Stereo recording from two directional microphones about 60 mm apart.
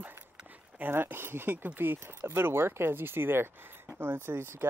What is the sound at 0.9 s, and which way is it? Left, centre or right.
Speech, right.